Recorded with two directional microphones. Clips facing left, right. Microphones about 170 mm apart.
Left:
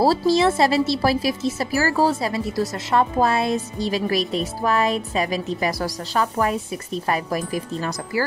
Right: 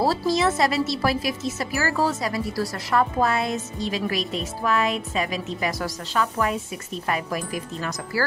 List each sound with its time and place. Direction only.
0.0 s speech: 30° left (ahead or behind)
8.1 s speech: 20° left (ahead or behind)